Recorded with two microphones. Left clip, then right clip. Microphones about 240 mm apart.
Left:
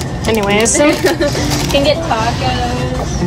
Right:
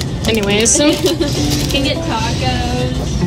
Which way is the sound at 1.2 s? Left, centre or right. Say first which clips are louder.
Left 2 dB; centre.